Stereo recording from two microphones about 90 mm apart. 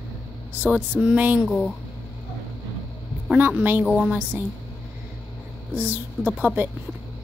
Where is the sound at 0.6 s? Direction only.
15° right (ahead or behind).